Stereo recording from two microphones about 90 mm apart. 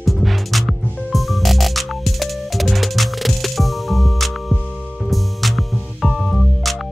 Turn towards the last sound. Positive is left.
turn(degrees=0)  # may be behind; listen again after turning